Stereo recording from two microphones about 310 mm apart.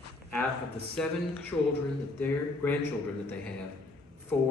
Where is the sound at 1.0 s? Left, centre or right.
Centre.